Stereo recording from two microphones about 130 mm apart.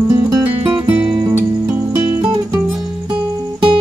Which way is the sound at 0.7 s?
35° right (ahead or behind).